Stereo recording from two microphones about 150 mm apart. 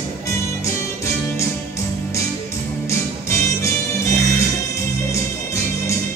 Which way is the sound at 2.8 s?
20° left (ahead or behind).